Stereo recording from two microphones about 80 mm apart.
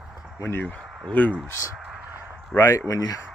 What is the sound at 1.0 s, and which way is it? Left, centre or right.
Speech, centre.